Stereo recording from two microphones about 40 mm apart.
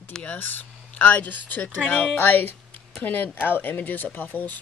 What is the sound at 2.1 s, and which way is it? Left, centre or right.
Speech, left.